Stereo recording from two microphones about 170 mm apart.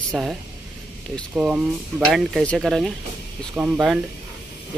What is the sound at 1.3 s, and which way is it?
Speech, 10° right (ahead or behind).